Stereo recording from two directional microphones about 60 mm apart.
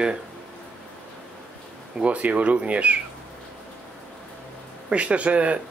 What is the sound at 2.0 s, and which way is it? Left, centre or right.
Speech, right.